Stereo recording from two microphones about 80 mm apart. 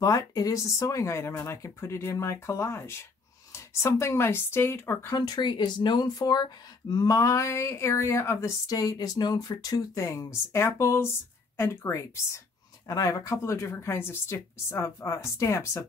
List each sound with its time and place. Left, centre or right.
0.0 s speech: left
5.1 s speech: left
12.8 s speech: left